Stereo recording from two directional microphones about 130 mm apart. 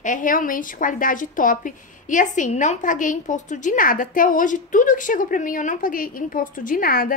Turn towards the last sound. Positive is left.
turn(degrees=90)